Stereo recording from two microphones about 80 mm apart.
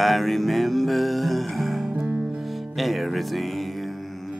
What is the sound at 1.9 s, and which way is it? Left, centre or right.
Music, centre.